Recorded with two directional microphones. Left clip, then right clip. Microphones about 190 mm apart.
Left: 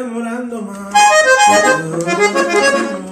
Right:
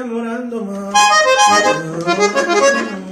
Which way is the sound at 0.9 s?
20° right (ahead or behind).